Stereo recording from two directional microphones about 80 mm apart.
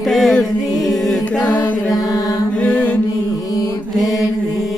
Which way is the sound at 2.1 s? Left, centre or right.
Left.